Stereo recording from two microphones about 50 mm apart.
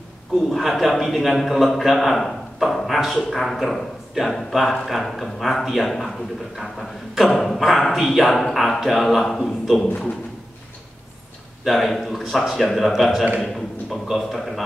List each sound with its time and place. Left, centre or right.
0.5 s a man's voice: centre
11.6 s a man's voice: centre